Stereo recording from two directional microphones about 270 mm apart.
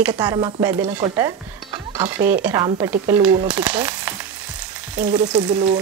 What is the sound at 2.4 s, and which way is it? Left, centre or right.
Speech, centre.